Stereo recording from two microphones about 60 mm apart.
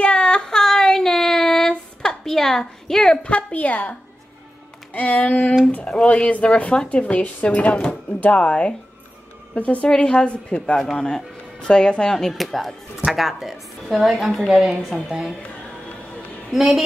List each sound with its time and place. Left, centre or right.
0.0 s child singing: centre
3.3 s speech: left
4.9 s speech: left
5.9 s speech: centre
6.2 s speech: left
9.8 s a woman's voice: centre
16.5 s a woman's voice: centre